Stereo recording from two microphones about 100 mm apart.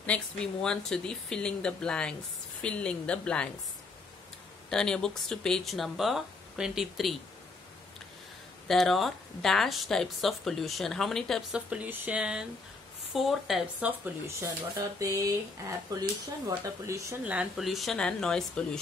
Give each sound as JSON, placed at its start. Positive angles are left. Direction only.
{"t": 0.0, "sound": "speech", "side_deg": 10}
{"t": 4.6, "sound": "speech", "side_deg": 5}
{"t": 8.6, "sound": "speech", "side_deg": 0}
{"t": 11.5, "sound": "speech", "side_deg": -15}
{"t": 12.2, "sound": "speech", "side_deg": -5}
{"t": 13.7, "sound": "speech", "side_deg": -15}
{"t": 15.0, "sound": "speech", "side_deg": -35}
{"t": 17.2, "sound": "speech", "side_deg": -10}